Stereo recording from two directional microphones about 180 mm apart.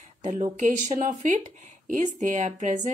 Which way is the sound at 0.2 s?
40° right (ahead or behind).